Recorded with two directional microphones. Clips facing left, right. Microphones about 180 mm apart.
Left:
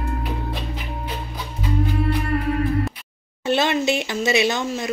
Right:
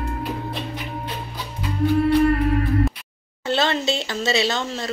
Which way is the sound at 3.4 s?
20° left (ahead or behind).